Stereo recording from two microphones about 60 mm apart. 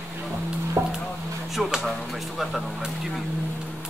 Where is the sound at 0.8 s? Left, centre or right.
Right.